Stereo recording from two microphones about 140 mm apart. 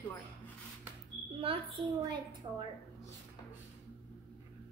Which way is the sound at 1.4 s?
40° right (ahead or behind).